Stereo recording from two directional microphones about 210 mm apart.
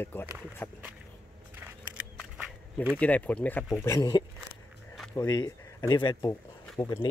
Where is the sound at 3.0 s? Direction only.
5° left (ahead or behind).